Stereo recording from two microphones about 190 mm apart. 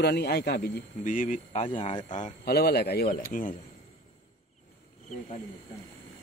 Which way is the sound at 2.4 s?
55° left (ahead or behind).